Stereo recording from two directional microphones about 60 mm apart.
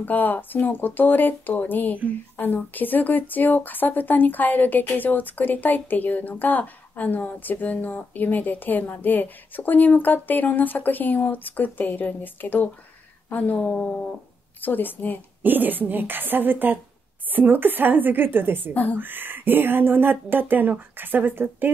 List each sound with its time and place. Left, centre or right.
0.0 s speech: left
15.4 s speech: right